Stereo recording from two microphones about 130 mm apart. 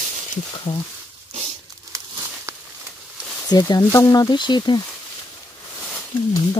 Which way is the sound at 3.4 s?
30° left (ahead or behind).